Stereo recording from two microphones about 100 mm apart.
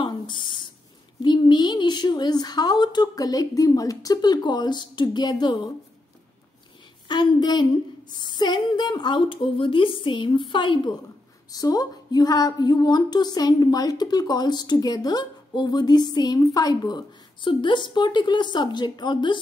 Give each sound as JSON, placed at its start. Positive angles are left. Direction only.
{"t": 0.0, "sound": "a sound", "side_deg": 55}
{"t": 1.2, "sound": "speech", "side_deg": 45}
{"t": 7.1, "sound": "speech", "side_deg": 45}
{"t": 11.5, "sound": "speech", "side_deg": 40}